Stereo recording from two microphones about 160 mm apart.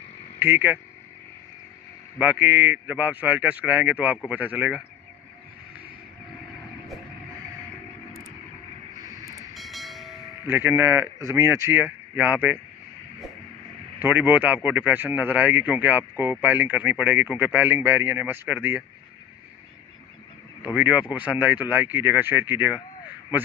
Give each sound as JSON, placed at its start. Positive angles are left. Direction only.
{"t": 0.4, "sound": "speech", "side_deg": -10}
{"t": 2.1, "sound": "speech", "side_deg": -10}
{"t": 9.2, "sound": "vehicle", "side_deg": -20}
{"t": 9.5, "sound": "train", "side_deg": 0}
{"t": 10.4, "sound": "speech", "side_deg": -10}
{"t": 13.9, "sound": "speech", "side_deg": -10}
{"t": 20.7, "sound": "speech", "side_deg": -10}